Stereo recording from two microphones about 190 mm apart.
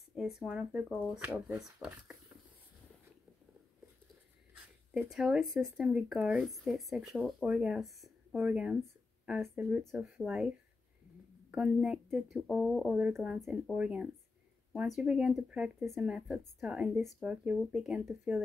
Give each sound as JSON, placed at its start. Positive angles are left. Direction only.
{"t": 0.1, "sound": "speech", "side_deg": 0}
{"t": 4.9, "sound": "speech", "side_deg": -5}
{"t": 11.5, "sound": "speech", "side_deg": -5}